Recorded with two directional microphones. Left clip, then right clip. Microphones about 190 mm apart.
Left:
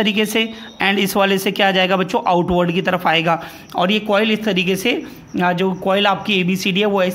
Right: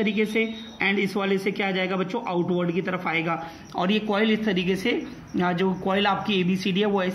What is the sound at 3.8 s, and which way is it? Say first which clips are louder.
A man's voice: left 8 dB; 40° left (ahead or behind).